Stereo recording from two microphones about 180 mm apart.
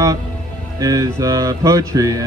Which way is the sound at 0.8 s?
20° right (ahead or behind).